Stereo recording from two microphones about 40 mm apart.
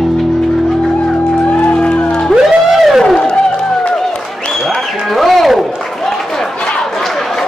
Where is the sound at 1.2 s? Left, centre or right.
Left.